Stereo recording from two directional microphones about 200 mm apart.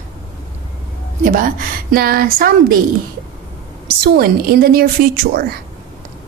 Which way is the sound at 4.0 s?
50° right (ahead or behind).